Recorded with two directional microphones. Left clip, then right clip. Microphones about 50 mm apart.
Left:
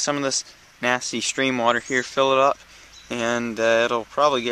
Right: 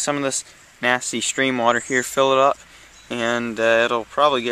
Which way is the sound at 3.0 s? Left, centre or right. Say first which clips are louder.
Right 2 dB; centre.